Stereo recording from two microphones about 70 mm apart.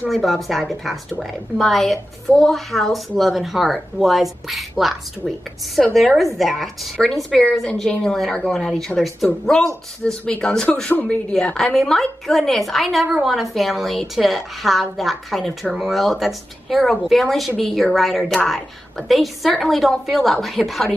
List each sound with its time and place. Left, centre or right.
0.1 s speech: centre
5.9 s speech: centre
10.9 s speech: left
11.3 s speech: centre